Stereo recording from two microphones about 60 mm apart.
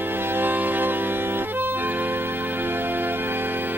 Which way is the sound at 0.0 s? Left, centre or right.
Right.